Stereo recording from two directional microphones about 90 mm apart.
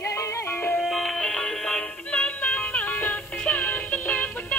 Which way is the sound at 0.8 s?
5° left (ahead or behind).